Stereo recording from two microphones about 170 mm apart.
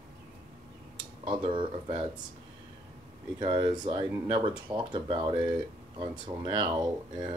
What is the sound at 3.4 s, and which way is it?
Speech, 30° right (ahead or behind).